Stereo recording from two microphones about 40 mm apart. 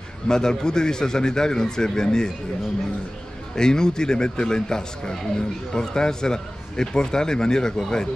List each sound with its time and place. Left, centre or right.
0.3 s a man's voice: centre
3.5 s a man's voice: centre